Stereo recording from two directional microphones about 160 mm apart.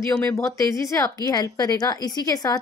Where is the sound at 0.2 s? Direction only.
10° left (ahead or behind).